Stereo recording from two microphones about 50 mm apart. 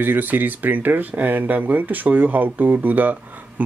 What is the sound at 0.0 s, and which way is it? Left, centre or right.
Speech, right.